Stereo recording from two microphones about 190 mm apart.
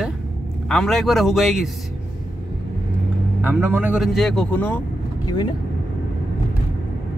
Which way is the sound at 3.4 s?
10° right (ahead or behind).